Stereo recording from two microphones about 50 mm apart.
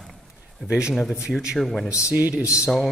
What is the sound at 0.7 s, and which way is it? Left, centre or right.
Speech, centre.